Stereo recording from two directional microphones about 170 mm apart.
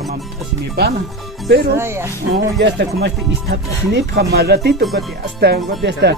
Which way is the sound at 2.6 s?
80° right.